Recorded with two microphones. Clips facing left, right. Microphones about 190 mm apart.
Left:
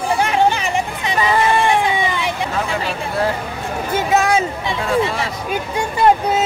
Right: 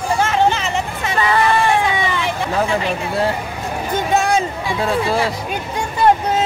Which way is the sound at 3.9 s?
5° left (ahead or behind).